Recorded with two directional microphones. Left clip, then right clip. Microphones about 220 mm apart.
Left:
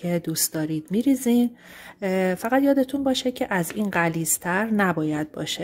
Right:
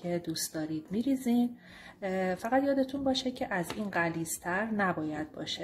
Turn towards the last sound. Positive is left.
turn(degrees=50)  # may be behind; listen again after turning